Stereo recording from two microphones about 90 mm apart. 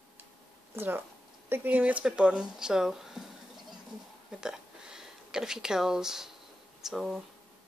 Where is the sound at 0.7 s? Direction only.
25° right (ahead or behind); by 3.3 s 5° right (ahead or behind).